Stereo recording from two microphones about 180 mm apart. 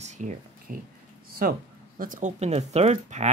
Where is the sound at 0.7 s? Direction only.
50° right (ahead or behind).